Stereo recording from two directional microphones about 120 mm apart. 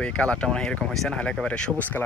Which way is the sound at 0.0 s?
10° left (ahead or behind).